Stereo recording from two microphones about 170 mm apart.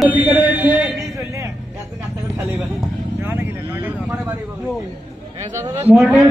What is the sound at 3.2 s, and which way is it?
Speech, 10° right (ahead or behind).